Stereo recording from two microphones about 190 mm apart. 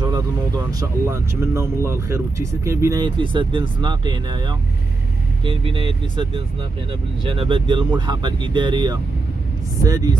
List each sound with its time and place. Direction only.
0.0 s speech: 20° right (ahead or behind)